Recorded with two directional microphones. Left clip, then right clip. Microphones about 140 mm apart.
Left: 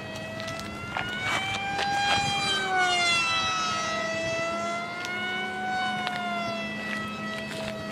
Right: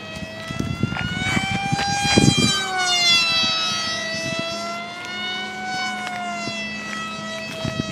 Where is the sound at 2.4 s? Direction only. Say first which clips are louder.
Right 4 dB; 35° right (ahead or behind).